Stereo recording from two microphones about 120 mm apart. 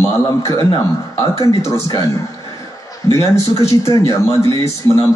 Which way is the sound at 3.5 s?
25° left (ahead or behind).